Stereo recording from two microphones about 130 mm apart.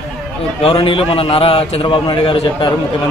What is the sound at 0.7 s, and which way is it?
A man's voice, 45° left (ahead or behind).